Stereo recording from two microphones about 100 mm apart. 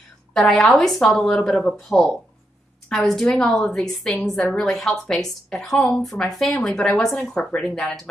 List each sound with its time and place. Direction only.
0.3 s a woman's voice: 5° left (ahead or behind)